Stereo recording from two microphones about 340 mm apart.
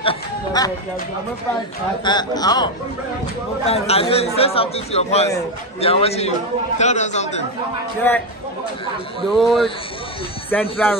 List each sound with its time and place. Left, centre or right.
0.0 s music: centre
2.0 s a man's voice: centre
9.2 s speech: centre